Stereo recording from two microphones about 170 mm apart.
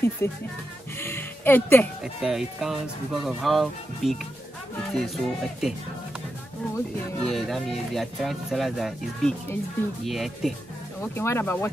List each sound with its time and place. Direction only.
0.2 s speech: 15° left (ahead or behind)
0.9 s music: 15° left (ahead or behind)
2.2 s speech: centre (ahead or behind)
7.2 s speech: centre (ahead or behind)
11.0 s speech: 15° left (ahead or behind)